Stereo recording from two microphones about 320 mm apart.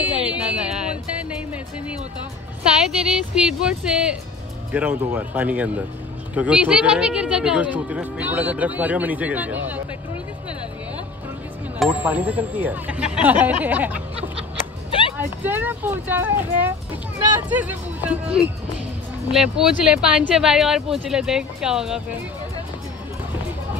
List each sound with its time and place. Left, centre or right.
0.1 s music: centre
2.9 s speech: centre
11.8 s speech: centre
15.1 s speech: centre
19.3 s speech: centre